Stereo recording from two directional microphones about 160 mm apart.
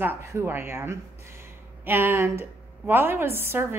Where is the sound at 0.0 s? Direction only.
15° right (ahead or behind).